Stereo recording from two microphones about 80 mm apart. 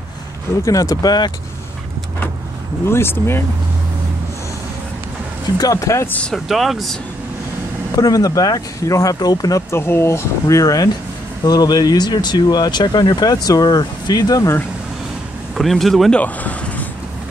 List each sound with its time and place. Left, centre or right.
0.7 s speech: left
2.9 s speech: left
5.6 s speech: left
6.0 s speech: centre
6.3 s speech: centre
7.9 s speech: left
9.7 s speech: left
15.5 s speech: centre
16.2 s vehicle: centre